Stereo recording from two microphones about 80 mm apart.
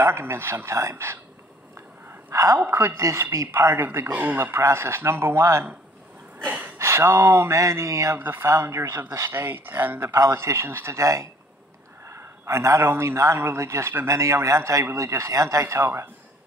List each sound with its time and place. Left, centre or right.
0.0 s a man's voice: right
2.3 s a woman's voice: right
2.6 s a man's voice: right
4.1 s a man's voice: right
6.4 s speech: right
6.8 s a man's voice: right
8.2 s speech: right
8.5 s a man's voice: right
9.3 s speech: right
10.0 s a man's voice: right